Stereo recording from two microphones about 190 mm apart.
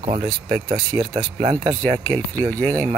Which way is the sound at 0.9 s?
20° right (ahead or behind).